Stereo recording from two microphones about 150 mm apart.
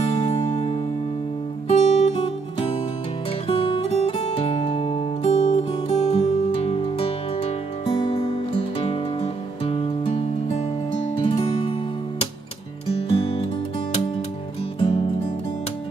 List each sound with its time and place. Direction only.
0.5 s music: 50° left (ahead or behind)
12.9 s music: 40° left (ahead or behind)
14.8 s music: 40° left (ahead or behind)